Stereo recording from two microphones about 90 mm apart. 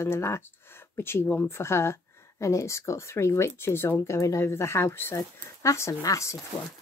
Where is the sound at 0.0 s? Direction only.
30° left (ahead or behind).